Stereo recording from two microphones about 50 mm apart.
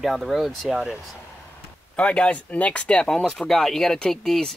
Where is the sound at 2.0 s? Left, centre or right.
Left.